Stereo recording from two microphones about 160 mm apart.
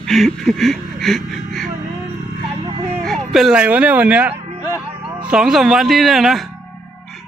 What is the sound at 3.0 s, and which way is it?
Speech, centre (ahead or behind).